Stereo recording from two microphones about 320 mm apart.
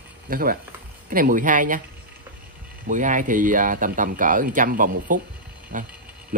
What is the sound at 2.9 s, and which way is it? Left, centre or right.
Speech, right.